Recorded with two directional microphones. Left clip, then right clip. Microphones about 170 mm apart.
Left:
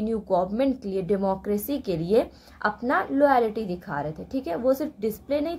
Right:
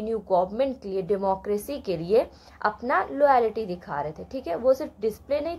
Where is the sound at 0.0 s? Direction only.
15° left (ahead or behind).